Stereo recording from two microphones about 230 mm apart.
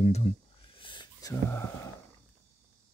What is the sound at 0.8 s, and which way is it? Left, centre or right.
Wheeze, left.